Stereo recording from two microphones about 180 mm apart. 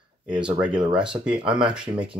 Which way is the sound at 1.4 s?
30° right (ahead or behind).